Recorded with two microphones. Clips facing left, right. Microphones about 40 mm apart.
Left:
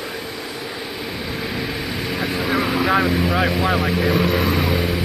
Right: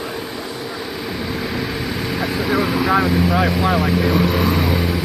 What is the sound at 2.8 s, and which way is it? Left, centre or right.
Speech, left.